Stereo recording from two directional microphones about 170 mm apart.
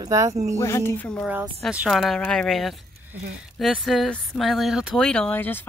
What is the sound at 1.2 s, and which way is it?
Speech, 5° right (ahead or behind).